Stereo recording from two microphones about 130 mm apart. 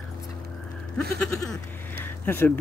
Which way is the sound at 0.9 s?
5° left (ahead or behind).